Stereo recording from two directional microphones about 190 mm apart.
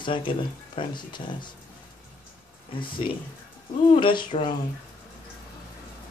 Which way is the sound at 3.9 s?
25° left (ahead or behind).